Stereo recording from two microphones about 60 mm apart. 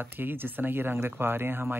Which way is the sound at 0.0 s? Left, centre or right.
Right.